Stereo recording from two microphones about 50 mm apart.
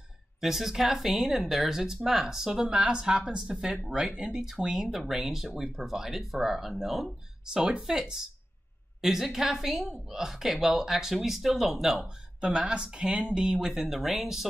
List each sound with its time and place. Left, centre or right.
0.4 s speech: centre
7.5 s speech: centre
12.4 s speech: centre